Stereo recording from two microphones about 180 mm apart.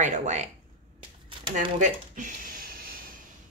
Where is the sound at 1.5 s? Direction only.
45° right (ahead or behind).